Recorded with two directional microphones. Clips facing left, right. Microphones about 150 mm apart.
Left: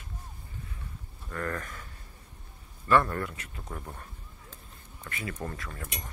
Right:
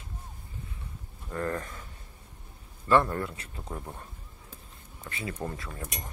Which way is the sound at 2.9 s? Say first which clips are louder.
Right 1 dB; 25° right (ahead or behind).